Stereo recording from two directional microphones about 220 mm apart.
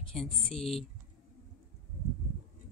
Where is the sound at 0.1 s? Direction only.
5° left (ahead or behind).